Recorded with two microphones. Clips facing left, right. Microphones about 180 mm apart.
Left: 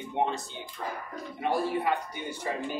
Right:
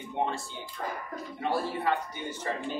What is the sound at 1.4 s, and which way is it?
Speech, 15° left (ahead or behind).